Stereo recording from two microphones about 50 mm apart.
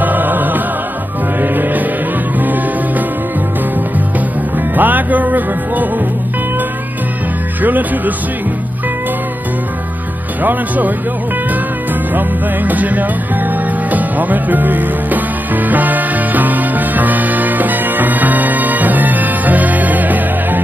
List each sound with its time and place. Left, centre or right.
0.0 s music: right
4.7 s music: right
7.6 s music: right
12.1 s music: right